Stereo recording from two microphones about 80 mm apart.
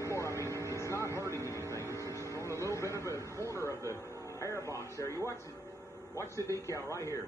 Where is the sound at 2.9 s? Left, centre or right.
Left.